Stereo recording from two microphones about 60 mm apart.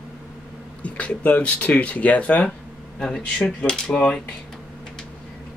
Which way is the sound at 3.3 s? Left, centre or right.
Centre.